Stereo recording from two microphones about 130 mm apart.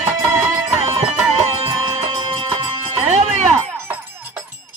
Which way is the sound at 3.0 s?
60° right (ahead or behind).